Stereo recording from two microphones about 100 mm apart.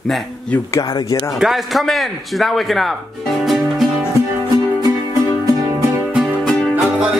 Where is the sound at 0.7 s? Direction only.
35° left (ahead or behind).